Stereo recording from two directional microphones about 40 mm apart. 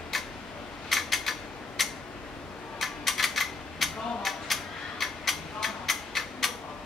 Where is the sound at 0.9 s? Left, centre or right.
Centre.